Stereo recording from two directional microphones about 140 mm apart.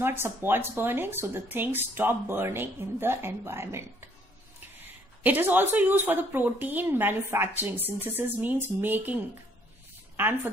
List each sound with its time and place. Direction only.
0.0 s a woman's voice: 15° right (ahead or behind)
5.2 s a woman's voice: 15° right (ahead or behind)